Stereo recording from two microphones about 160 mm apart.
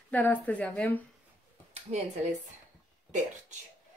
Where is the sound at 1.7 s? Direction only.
45° right (ahead or behind).